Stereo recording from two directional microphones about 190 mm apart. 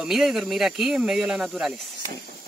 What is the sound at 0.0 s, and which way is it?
Speech, centre (ahead or behind).